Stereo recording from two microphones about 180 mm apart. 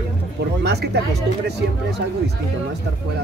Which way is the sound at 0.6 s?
65° right (ahead or behind).